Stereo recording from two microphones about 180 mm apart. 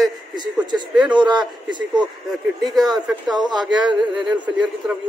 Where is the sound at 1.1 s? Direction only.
25° right (ahead or behind).